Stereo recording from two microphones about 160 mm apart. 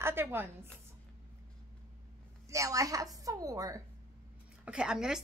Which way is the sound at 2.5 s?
20° right (ahead or behind).